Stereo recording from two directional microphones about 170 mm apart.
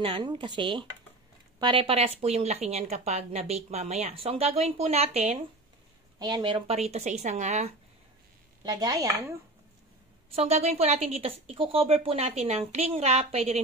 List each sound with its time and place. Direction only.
0.0 s speech: 30° right (ahead or behind)
6.1 s speech: 25° right (ahead or behind)
6.8 s a woman's voice: 40° right (ahead or behind)
8.6 s speech: 20° right (ahead or behind)
10.3 s speech: 40° right (ahead or behind)